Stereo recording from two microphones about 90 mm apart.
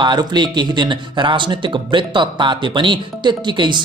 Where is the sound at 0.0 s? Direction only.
55° right (ahead or behind).